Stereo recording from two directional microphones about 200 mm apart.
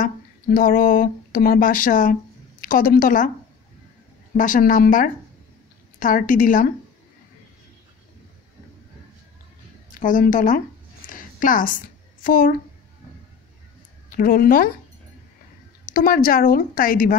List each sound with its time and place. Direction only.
0.0 s a woman's voice: 45° left (ahead or behind)
4.4 s a woman's voice: 40° left (ahead or behind)
9.9 s a woman's voice: 40° left (ahead or behind)
11.1 s a sound: 40° left (ahead or behind)
14.1 s a woman's voice: 45° left (ahead or behind)
15.8 s a woman's voice: 45° left (ahead or behind)